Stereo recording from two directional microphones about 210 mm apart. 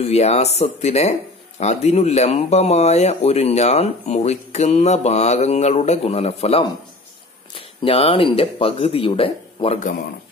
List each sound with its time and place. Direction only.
0.0 s speech: 30° left (ahead or behind)